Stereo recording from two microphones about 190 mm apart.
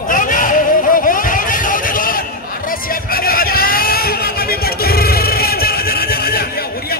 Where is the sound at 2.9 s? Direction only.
50° left (ahead or behind).